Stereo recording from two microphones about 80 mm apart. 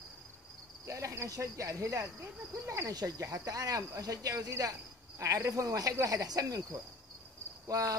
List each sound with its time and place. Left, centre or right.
0.8 s cricket: right
2.9 s speech: right